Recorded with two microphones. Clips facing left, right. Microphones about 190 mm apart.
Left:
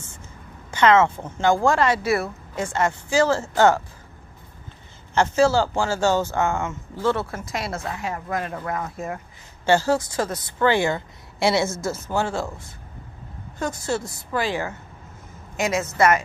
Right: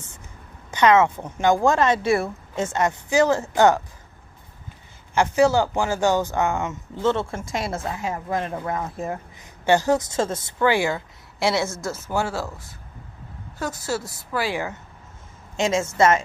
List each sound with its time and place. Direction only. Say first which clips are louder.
0.7 s speech: even; 15° right (ahead or behind)
2.0 s speech: right 2 dB; centre (ahead or behind)
2.5 s a woman's voice: even; 20° right (ahead or behind)
5.1 s speech: even; 15° right (ahead or behind)
7.5 s speech: right 2 dB; centre (ahead or behind)
7.8 s a woman's voice: right 1 dB; 20° right (ahead or behind)
10.6 s speech: left 1 dB; 10° right (ahead or behind)
13.6 s speech: left 1 dB; 5° right (ahead or behind)
15.5 s a woman's voice: right 2 dB; 25° right (ahead or behind)